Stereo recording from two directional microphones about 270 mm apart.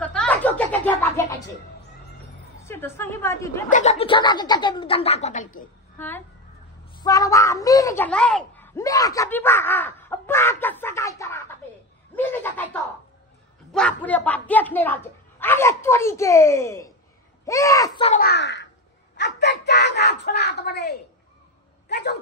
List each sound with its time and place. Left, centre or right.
0.0 s a sound: centre
2.6 s speech: centre
3.7 s speech: left
5.9 s speech: centre
12.2 s snicker: centre
13.7 s speech: centre
18.2 s a child's voice: left